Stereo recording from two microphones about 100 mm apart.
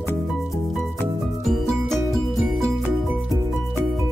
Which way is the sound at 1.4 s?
Centre (ahead or behind).